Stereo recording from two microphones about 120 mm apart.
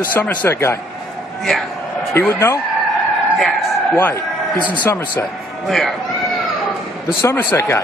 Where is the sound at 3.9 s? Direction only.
20° left (ahead or behind).